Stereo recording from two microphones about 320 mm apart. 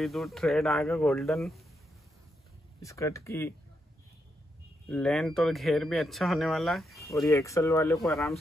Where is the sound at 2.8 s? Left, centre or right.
Centre.